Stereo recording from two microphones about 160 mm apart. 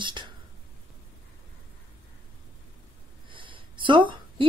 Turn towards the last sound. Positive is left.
turn(degrees=-30)  # may be behind; listen again after turning